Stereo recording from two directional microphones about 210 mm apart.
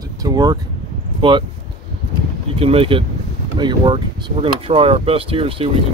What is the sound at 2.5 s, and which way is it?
Speech, 25° right (ahead or behind).